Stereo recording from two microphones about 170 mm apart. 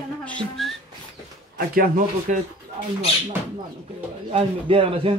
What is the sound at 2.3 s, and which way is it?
Speech, 50° right (ahead or behind).